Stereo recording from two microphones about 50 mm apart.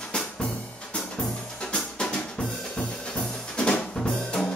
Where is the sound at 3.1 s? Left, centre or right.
Centre.